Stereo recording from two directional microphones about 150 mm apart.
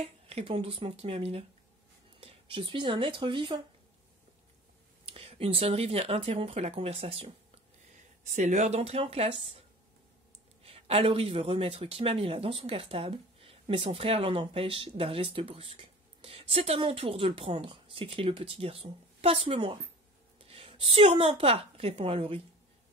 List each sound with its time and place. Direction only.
0.0 s speech: 40° right (ahead or behind)
5.0 s speech: 40° right (ahead or behind)
8.3 s a woman's voice: 55° right (ahead or behind); by 22.4 s 40° right (ahead or behind)